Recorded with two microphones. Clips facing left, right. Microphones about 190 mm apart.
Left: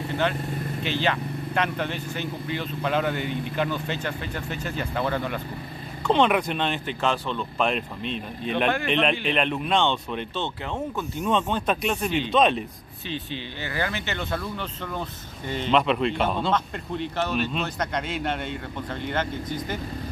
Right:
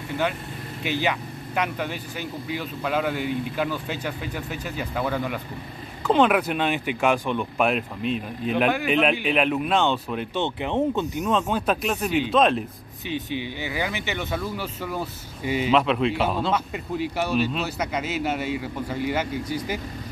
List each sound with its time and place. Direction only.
0.8 s speech: 10° right (ahead or behind)
10.4 s speech: 20° right (ahead or behind)
11.2 s speech: 5° right (ahead or behind)
13.1 s speech: 15° right (ahead or behind)